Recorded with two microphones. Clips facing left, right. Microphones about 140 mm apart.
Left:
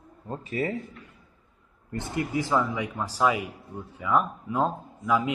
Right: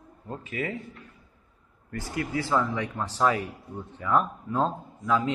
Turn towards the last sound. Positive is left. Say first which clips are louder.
# even
turn(degrees=10)  # may be behind; listen again after turning